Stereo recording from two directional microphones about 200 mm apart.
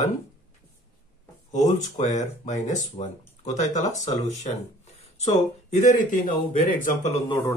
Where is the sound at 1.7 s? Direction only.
35° left (ahead or behind).